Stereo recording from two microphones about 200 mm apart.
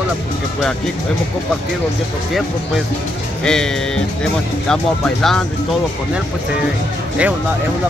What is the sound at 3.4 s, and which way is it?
Speech, 5° left (ahead or behind).